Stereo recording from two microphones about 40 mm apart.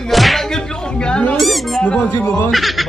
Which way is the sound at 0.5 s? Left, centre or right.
Centre.